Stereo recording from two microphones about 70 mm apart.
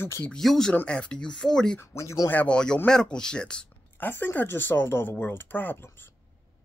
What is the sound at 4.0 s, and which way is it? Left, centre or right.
Speech, left.